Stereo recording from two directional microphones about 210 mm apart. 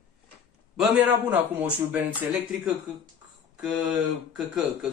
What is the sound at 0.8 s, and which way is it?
Speech, 10° right (ahead or behind).